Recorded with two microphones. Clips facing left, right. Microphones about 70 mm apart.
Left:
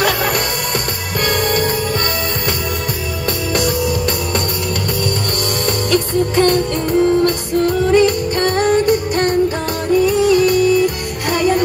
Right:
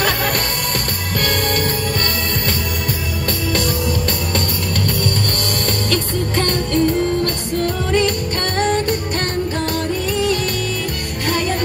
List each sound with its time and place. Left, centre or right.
1.2 s music: centre
5.7 s music: centre